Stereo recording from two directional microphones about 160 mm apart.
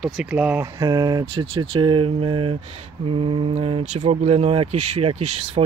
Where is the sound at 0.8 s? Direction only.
25° right (ahead or behind).